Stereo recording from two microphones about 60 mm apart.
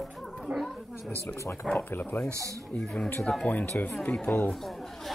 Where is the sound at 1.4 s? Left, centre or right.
Left.